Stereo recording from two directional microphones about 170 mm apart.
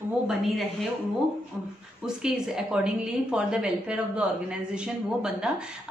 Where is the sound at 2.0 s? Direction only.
5° right (ahead or behind).